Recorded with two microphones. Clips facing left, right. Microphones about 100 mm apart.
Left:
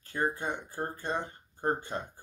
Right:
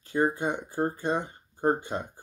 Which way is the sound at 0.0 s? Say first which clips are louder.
Right 6 dB; 15° right (ahead or behind).